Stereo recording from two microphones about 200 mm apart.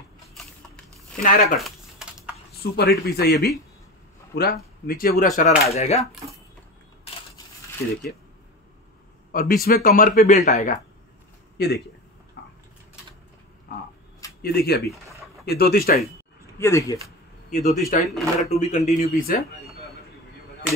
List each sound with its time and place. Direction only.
0.3 s a sound: centre (ahead or behind)
1.2 s speech: 45° left (ahead or behind)
1.6 s typing: 5° right (ahead or behind)
2.7 s speech: 55° left (ahead or behind); by 6.0 s 30° left (ahead or behind)
9.3 s speech: 45° left (ahead or behind)
11.5 s speech: 50° left (ahead or behind)
12.4 s a sound: 60° left (ahead or behind)
14.4 s speech: 50° left (ahead or behind)
16.5 s speech: 15° left (ahead or behind)
17.5 s speech: 40° left (ahead or behind)
18.1 s speech: centre (ahead or behind)
18.5 s speech: 35° left (ahead or behind)